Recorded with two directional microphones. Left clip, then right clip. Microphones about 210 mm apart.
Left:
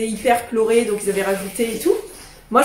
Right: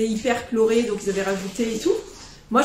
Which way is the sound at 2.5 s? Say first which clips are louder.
Left 4 dB; centre (ahead or behind).